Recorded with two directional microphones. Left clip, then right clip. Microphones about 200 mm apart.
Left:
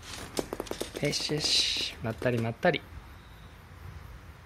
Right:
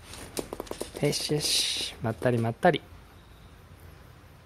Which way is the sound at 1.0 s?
30° right (ahead or behind).